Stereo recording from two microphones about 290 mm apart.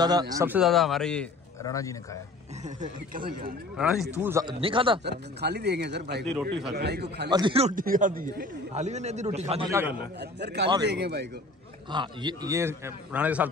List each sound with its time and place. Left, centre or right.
0.0 s a man's voice: centre
2.6 s a man's voice: right
3.7 s a man's voice: centre
5.0 s a man's voice: right
7.2 s a man's voice: centre
9.7 s a man's voice: centre
10.4 s a man's voice: right
11.9 s a man's voice: centre